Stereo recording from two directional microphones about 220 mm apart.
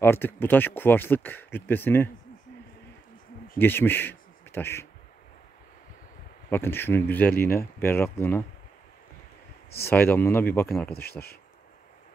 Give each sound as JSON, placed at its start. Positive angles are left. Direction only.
{"t": 0.0, "sound": "speech", "side_deg": 10}
{"t": 3.5, "sound": "speech", "side_deg": 10}
{"t": 6.5, "sound": "speech", "side_deg": 10}
{"t": 9.8, "sound": "speech", "side_deg": 10}
{"t": 10.9, "sound": "speech", "side_deg": 45}